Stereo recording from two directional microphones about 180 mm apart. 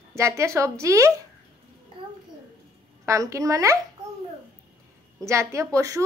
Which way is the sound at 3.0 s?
15° right (ahead or behind).